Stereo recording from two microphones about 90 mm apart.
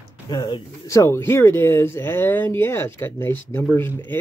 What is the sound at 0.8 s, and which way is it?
Speech, 35° left (ahead or behind).